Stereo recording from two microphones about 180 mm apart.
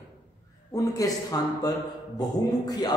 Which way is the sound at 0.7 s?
20° left (ahead or behind).